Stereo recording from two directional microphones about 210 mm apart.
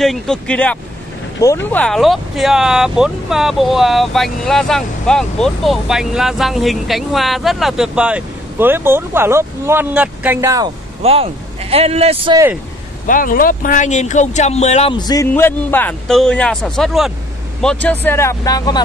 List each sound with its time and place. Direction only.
0.0 s speech: centre (ahead or behind); by 10.7 s 15° right (ahead or behind)
11.0 s speech: 30° right (ahead or behind)
13.0 s speech: 40° left (ahead or behind)
15.0 s speech: 15° left (ahead or behind)